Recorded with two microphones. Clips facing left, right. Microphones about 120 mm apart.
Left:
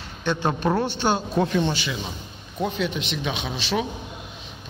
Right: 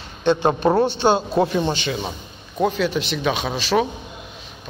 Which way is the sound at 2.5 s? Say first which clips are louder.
Right 6 dB; 40° right (ahead or behind).